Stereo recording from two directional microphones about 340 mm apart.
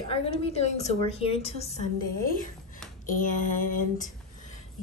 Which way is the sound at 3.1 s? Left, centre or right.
Left.